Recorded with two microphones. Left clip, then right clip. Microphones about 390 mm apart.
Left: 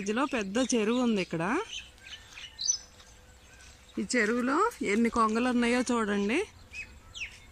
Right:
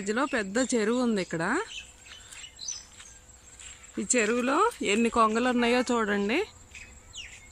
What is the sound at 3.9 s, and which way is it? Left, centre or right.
Speech, centre.